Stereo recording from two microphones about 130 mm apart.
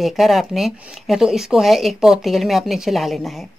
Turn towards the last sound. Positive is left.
turn(degrees=0)  # may be behind; listen again after turning